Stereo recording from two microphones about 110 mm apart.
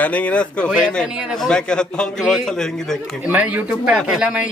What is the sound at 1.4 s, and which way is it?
A man's voice, 5° left (ahead or behind).